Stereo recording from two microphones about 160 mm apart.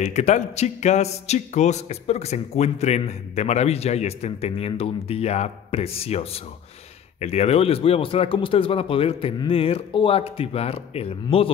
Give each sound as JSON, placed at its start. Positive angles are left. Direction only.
{"t": 0.0, "sound": "speech", "side_deg": 45}